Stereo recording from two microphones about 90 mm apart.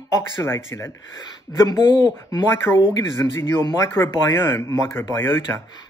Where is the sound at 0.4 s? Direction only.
30° left (ahead or behind).